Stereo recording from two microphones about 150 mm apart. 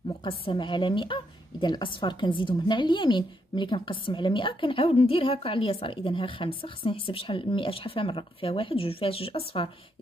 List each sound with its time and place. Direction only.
0.2 s a woman's voice: 35° left (ahead or behind)